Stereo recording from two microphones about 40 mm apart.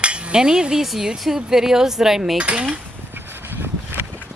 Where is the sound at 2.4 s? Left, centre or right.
Right.